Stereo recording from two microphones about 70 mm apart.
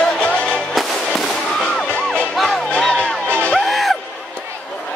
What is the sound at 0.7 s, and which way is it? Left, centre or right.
Fireworks, centre.